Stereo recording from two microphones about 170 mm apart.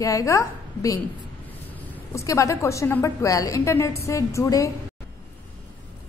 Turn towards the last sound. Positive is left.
turn(degrees=20)  # may be behind; listen again after turning